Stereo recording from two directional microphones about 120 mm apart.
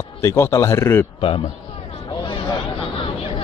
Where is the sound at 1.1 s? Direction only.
45° left (ahead or behind).